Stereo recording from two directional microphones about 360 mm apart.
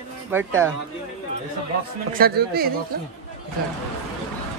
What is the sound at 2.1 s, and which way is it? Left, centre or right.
Speech, right.